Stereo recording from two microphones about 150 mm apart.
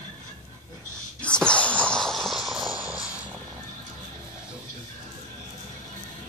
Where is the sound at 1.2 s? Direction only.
5° left (ahead or behind).